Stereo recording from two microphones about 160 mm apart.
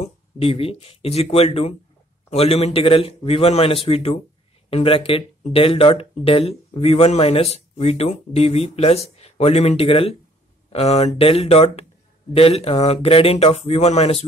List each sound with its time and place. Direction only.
0.0 s speech: 35° left (ahead or behind)